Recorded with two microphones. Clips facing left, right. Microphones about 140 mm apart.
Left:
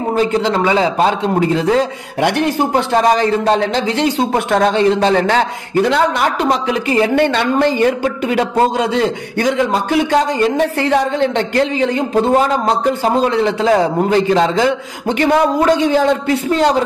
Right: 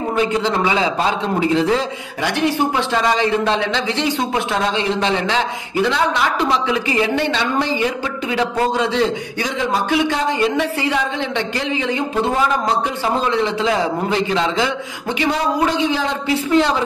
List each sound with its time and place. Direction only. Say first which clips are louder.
0.1 s a man's voice: left 4 dB; 40° left (ahead or behind)